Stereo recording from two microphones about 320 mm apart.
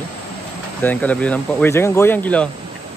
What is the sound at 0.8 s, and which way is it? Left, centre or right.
Speech, centre.